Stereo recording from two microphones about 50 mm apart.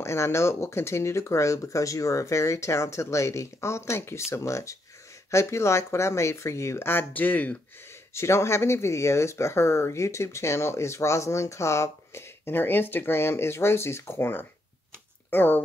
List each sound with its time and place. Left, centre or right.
0.0 s speech: left
5.3 s speech: left
7.2 s speech: left
8.1 s speech: left